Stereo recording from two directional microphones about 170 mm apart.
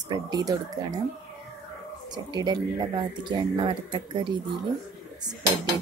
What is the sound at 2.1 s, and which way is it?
Speech, 25° right (ahead or behind).